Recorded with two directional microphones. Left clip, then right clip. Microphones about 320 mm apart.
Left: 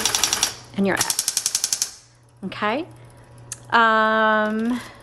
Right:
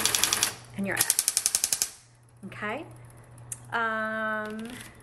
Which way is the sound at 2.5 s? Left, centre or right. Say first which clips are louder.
Left 10 dB; centre.